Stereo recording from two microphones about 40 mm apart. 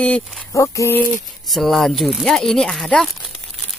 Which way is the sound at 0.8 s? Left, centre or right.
Left.